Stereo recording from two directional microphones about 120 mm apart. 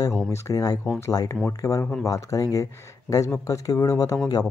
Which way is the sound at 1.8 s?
10° left (ahead or behind).